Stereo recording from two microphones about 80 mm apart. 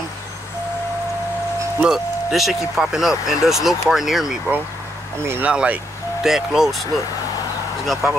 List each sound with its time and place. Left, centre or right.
1.8 s speech: centre
5.5 s speech: centre
8.0 s speech: centre